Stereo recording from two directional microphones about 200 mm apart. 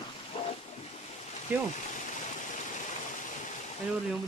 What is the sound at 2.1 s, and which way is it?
Stream, 40° left (ahead or behind).